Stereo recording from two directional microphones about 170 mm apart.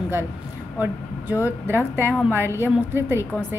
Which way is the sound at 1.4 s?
15° right (ahead or behind).